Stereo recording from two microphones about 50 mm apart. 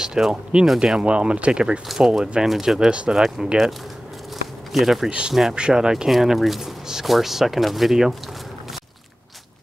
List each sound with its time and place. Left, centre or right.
0.0 s speech: centre
1.9 s speech: centre
2.9 s speech: right
3.2 s speech: centre
4.7 s speech: centre
6.0 s speech: centre